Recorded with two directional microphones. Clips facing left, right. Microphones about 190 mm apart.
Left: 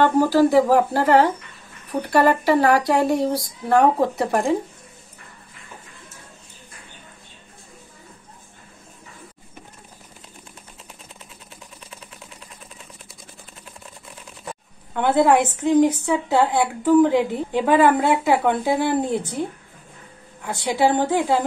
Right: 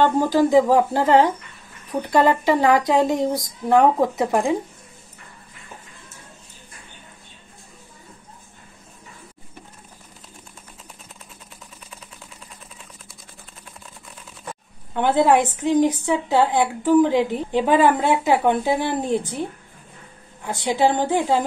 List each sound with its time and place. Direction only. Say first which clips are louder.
0.0 s speech: left 1 dB; 15° right (ahead or behind)
15.0 s a woman's voice: even; 20° right (ahead or behind)
19.1 s speech: right 1 dB; 15° left (ahead or behind)
20.4 s speech: even; 20° right (ahead or behind)